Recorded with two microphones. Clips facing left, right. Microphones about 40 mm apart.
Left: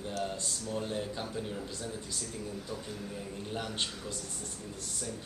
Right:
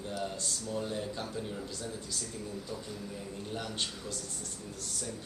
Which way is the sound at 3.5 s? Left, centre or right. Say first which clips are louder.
Left 1 dB; left.